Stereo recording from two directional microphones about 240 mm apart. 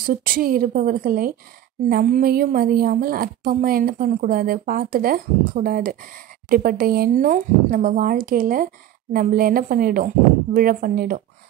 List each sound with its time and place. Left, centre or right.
0.0 s a woman's voice: right